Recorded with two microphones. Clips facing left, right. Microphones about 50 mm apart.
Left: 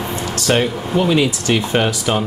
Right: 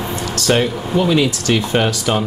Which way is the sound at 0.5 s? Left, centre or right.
Centre.